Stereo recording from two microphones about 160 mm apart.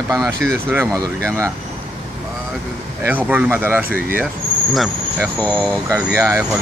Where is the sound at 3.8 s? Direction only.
65° left (ahead or behind).